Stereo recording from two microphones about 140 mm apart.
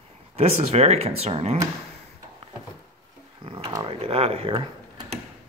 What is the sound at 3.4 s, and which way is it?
Speech, 35° right (ahead or behind).